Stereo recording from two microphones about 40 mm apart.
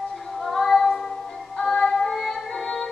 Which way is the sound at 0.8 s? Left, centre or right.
Centre.